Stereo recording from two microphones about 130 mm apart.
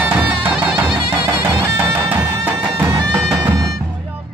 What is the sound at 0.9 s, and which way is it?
Music, 40° right (ahead or behind).